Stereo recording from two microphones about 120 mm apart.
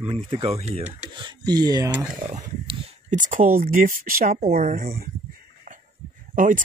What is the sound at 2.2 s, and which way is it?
Speech, 75° right (ahead or behind).